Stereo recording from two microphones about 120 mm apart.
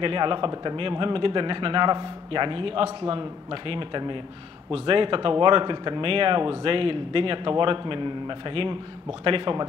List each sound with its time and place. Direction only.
0.0 s a man's voice: 45° right (ahead or behind)